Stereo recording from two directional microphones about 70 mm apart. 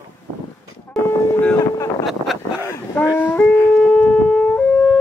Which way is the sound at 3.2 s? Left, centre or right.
Left.